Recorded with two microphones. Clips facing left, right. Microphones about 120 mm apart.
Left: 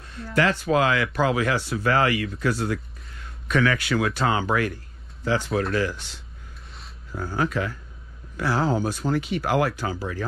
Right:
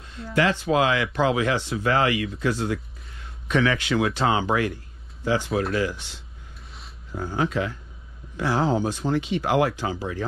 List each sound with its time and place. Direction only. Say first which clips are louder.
0.3 s speech: even; 20° right (ahead or behind)
7.2 s speech: right 1 dB; 20° right (ahead or behind)